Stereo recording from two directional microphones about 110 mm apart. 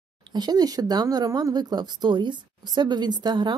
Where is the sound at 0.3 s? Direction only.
40° right (ahead or behind).